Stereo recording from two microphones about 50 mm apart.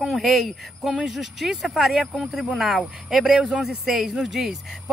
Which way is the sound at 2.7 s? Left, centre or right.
Right.